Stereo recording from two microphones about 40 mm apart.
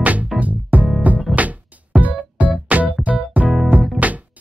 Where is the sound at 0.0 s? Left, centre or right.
Right.